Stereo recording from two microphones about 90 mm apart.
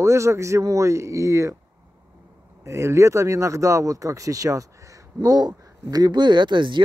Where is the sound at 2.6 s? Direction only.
30° right (ahead or behind).